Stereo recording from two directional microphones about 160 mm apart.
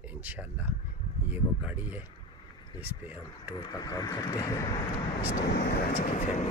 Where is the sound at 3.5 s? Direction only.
25° left (ahead or behind).